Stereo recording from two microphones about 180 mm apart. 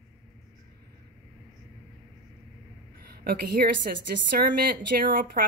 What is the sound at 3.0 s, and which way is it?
A woman's voice, 60° right (ahead or behind).